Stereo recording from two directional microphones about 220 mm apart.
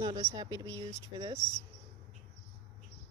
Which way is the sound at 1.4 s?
5° left (ahead or behind).